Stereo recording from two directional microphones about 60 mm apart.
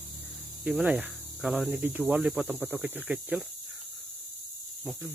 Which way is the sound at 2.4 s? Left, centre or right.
Right.